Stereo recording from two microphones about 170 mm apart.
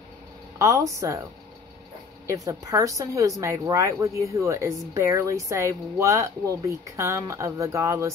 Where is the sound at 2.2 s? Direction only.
20° right (ahead or behind).